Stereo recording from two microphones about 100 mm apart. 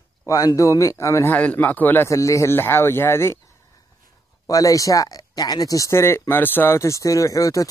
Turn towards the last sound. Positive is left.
turn(degrees=35)  # may be behind; listen again after turning